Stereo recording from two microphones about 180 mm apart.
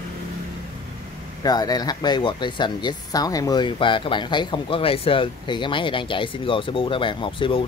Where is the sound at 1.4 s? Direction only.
20° left (ahead or behind).